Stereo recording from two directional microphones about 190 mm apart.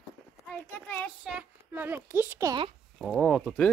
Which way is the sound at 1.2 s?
5° right (ahead or behind).